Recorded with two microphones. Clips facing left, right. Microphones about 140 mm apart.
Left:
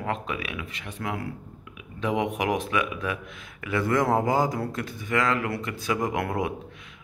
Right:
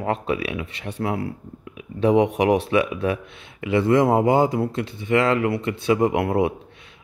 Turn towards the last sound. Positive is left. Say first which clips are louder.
# right 7 dB
turn(degrees=-30)  # may be behind; listen again after turning